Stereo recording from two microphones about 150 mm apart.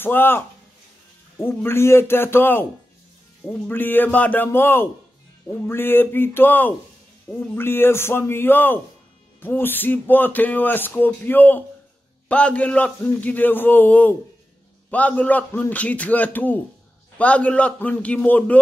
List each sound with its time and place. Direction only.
0.0 s speech: 15° left (ahead or behind)
1.6 s speech: 15° left (ahead or behind)
3.6 s speech: 15° left (ahead or behind)